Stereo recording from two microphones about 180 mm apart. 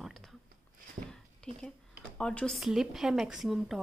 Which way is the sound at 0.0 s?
Centre (ahead or behind).